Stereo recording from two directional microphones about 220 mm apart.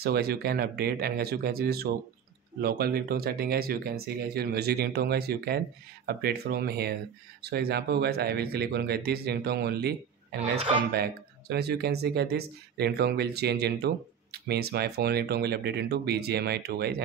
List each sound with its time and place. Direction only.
0.0 s speech: 45° right (ahead or behind)